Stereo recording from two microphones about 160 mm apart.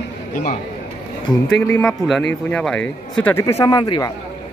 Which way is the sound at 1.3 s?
25° left (ahead or behind).